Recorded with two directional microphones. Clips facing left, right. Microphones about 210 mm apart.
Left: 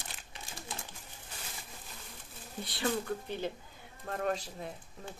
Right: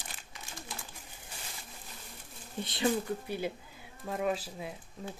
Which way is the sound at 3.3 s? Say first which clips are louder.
Right 2 dB; 10° right (ahead or behind).